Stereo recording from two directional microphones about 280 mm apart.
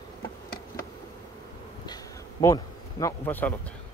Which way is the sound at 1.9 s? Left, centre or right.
Centre.